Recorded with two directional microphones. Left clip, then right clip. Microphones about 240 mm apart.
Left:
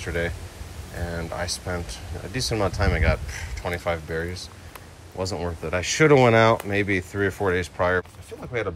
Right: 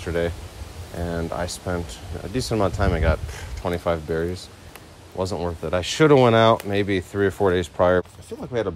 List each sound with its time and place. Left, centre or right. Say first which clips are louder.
0.0 s speech: right 3 dB; centre
5.1 s speech: right 3 dB; right
5.4 s speech: right 2 dB; centre